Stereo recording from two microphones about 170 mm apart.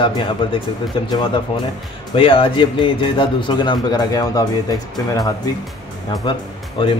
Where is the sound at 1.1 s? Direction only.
25° left (ahead or behind).